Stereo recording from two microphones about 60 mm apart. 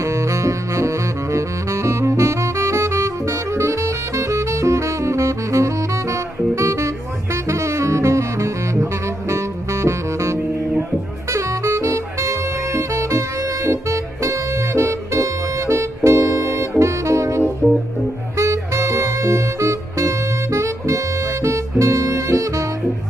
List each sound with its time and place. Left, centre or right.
0.0 s saxophone: right
9.3 s music: right
11.3 s saxophone: right
13.7 s music: right
18.4 s music: right